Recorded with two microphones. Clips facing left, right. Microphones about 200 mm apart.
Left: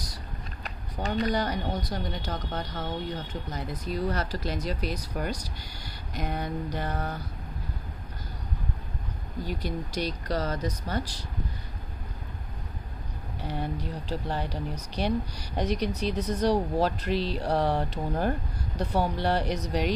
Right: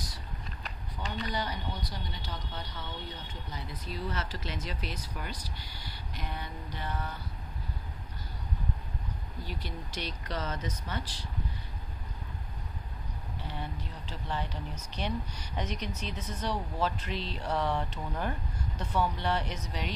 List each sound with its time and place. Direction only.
0.7 s speech: 45° left (ahead or behind)
9.4 s speech: 45° left (ahead or behind)
13.4 s speech: 40° left (ahead or behind)